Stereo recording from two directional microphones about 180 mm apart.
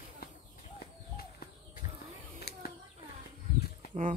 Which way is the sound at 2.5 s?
65° left (ahead or behind).